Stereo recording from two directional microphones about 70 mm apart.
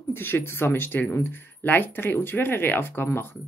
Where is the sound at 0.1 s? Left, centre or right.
Left.